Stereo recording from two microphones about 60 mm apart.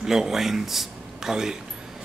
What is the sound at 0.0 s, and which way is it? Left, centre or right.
A man's voice, centre.